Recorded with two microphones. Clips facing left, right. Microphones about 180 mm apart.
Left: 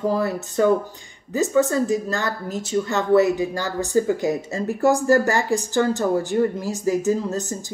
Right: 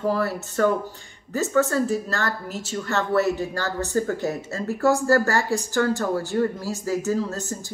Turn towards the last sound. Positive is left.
turn(degrees=15)  # may be behind; listen again after turning